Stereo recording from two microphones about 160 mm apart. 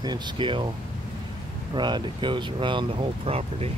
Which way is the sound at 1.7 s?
30° right (ahead or behind).